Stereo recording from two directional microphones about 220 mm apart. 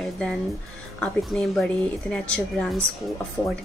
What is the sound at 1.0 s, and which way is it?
Speech, centre (ahead or behind).